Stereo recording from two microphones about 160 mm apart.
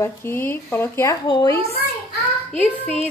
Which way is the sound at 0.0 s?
15° left (ahead or behind).